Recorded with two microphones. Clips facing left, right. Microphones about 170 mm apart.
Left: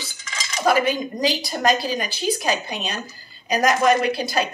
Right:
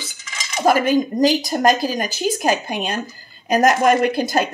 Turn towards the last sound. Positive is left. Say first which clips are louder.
# right 4 dB
turn(degrees=-50)  # may be behind; listen again after turning